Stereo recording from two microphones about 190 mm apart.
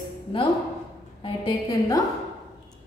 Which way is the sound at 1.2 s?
20° left (ahead or behind).